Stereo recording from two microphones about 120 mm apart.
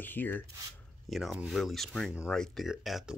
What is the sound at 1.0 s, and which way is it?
Speech, centre (ahead or behind).